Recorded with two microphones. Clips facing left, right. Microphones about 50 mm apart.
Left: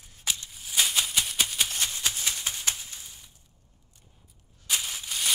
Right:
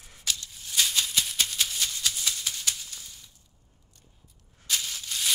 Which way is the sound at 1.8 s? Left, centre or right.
Left.